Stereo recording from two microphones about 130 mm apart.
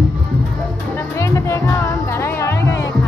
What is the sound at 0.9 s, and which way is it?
Music, 20° left (ahead or behind).